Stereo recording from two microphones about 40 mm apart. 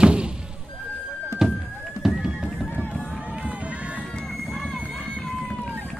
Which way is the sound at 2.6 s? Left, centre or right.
Left.